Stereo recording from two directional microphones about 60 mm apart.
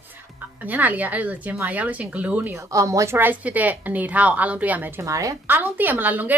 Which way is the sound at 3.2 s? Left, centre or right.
Right.